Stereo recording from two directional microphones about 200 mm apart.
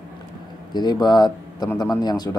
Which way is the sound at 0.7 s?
20° left (ahead or behind).